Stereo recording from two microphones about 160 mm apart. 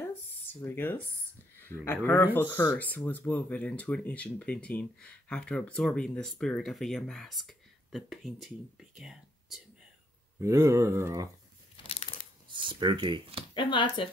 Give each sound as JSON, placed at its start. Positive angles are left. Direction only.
{"t": 0.1, "sound": "speech", "side_deg": 15}
{"t": 10.4, "sound": "speech", "side_deg": -15}
{"t": 11.7, "sound": "a sound", "side_deg": 35}
{"t": 12.4, "sound": "speech", "side_deg": -30}
{"t": 13.6, "sound": "speech", "side_deg": 30}